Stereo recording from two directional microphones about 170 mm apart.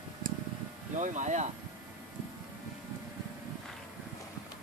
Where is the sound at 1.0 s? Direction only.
45° right (ahead or behind).